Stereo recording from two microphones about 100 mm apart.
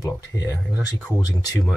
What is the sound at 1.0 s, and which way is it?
Speech, 30° left (ahead or behind).